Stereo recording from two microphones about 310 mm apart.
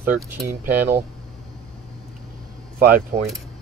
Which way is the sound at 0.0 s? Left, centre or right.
Centre.